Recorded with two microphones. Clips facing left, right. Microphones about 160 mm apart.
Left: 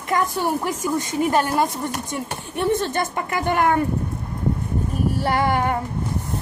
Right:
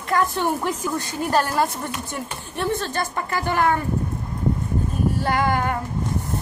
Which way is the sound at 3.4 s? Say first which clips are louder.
Left 2 dB; 55° left (ahead or behind).